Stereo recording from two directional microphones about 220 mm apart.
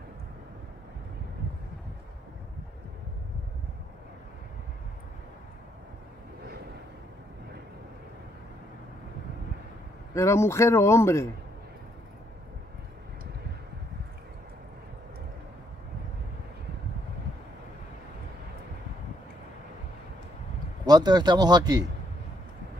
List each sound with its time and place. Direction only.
10.1 s speech: 15° left (ahead or behind)
20.8 s speech: 20° right (ahead or behind)